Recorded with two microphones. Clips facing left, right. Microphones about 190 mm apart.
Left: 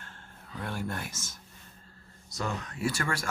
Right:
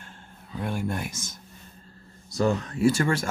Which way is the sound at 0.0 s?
15° right (ahead or behind).